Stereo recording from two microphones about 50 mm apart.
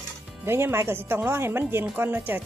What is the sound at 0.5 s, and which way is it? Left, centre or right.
Speech, right.